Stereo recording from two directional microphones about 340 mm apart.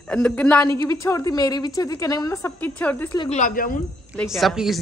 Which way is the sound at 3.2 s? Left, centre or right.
Left.